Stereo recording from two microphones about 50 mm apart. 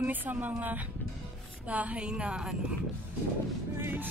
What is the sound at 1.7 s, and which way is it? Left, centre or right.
Speech, right.